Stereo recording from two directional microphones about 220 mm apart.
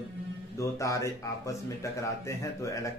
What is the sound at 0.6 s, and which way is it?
Speech, 15° left (ahead or behind).